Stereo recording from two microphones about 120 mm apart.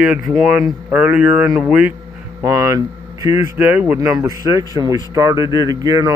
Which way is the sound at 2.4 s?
30° right (ahead or behind).